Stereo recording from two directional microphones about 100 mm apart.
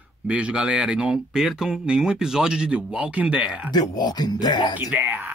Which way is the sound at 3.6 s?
40° left (ahead or behind).